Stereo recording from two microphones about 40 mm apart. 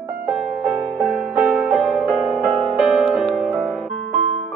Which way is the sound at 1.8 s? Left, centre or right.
Centre.